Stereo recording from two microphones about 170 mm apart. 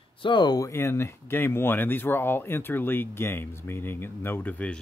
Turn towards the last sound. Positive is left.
turn(degrees=10)  # may be behind; listen again after turning